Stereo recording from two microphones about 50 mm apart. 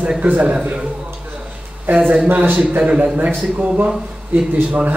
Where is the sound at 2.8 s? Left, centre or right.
Right.